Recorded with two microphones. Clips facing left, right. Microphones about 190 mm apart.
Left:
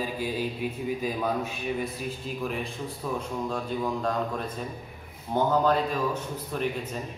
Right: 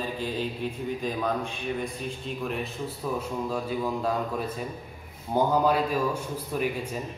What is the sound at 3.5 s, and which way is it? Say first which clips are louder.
Speech: even; 5° right (ahead or behind).